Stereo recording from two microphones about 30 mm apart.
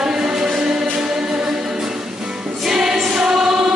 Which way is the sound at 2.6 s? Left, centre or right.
Centre.